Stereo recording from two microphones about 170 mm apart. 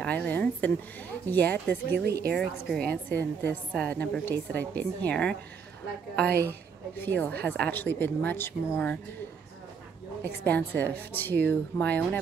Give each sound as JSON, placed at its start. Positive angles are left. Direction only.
{"t": 0.0, "sound": "a woman's voice", "side_deg": 10}
{"t": 2.0, "sound": "a woman's voice", "side_deg": -70}
{"t": 2.3, "sound": "a woman's voice", "side_deg": 0}
{"t": 6.1, "sound": "a woman's voice", "side_deg": -70}
{"t": 7.0, "sound": "a woman's voice", "side_deg": 10}
{"t": 10.4, "sound": "a woman's voice", "side_deg": 10}